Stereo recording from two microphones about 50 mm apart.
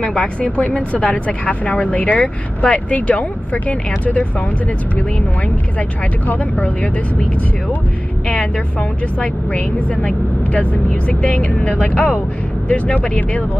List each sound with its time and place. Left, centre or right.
0.4 s speech: left
5.8 s speech: left
9.2 s speech: left